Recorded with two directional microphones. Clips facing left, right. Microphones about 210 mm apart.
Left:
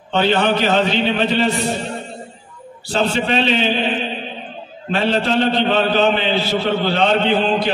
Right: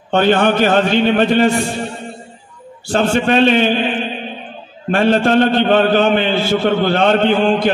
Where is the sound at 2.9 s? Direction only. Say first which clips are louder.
Right 4 dB; 50° right (ahead or behind).